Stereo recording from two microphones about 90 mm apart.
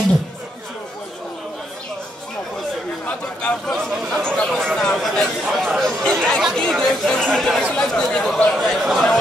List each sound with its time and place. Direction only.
3.1 s chatter: 15° left (ahead or behind)
6.7 s speech: 5° left (ahead or behind)